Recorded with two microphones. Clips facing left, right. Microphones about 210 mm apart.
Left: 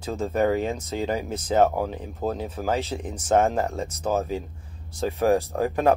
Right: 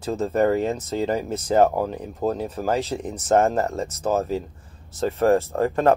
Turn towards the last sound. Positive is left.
turn(degrees=10)  # may be behind; listen again after turning